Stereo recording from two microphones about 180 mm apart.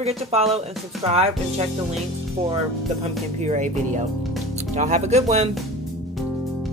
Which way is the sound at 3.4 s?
40° right (ahead or behind).